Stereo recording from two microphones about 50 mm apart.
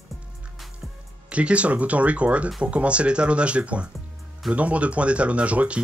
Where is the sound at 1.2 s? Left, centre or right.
Right.